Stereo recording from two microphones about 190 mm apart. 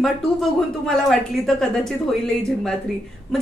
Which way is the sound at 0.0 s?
Centre (ahead or behind).